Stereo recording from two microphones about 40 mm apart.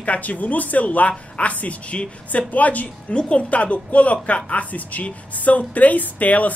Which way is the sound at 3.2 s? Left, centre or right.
Left.